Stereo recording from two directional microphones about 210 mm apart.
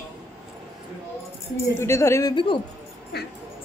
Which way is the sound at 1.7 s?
10° left (ahead or behind).